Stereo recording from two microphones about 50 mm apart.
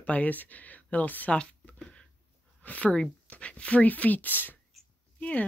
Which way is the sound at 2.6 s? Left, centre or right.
Left.